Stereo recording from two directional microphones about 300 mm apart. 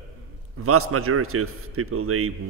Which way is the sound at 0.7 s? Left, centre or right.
Right.